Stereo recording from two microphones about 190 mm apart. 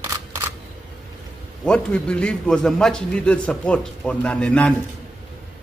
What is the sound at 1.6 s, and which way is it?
A man's voice, 5° left (ahead or behind).